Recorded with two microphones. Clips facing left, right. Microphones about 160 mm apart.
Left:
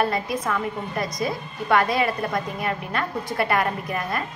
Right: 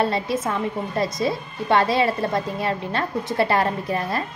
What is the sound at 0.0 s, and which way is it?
A woman's voice, 25° right (ahead or behind).